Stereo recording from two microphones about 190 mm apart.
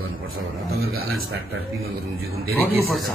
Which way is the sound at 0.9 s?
90° right.